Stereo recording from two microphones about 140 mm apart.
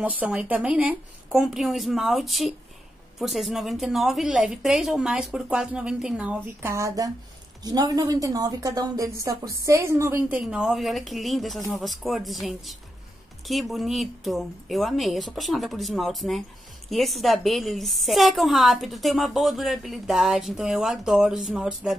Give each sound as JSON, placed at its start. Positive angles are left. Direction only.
{"t": 0.0, "sound": "a woman's voice", "side_deg": -10}